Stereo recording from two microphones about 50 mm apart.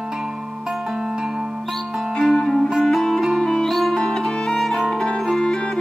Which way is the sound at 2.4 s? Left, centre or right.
Centre.